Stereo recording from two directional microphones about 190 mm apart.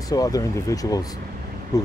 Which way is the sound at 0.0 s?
20° left (ahead or behind).